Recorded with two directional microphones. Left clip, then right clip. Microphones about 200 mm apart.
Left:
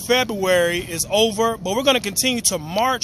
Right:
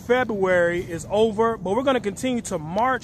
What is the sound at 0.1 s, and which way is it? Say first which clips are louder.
Speech: left 2 dB; 25° left (ahead or behind).